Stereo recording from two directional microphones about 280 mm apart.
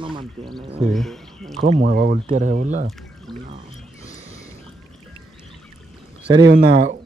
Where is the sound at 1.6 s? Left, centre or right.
Right.